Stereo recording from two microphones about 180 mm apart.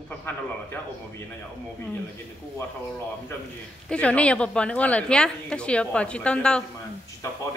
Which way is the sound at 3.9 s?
5° left (ahead or behind).